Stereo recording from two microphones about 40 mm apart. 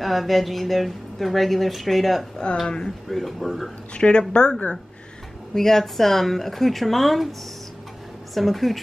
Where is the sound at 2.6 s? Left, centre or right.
Left.